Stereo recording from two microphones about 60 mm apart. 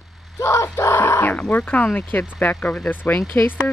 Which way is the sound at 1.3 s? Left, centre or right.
Left.